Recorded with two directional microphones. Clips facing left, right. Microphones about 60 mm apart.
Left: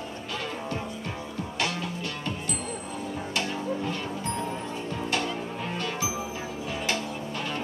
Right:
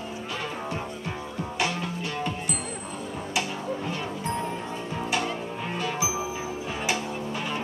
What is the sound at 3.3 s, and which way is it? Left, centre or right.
Music, centre.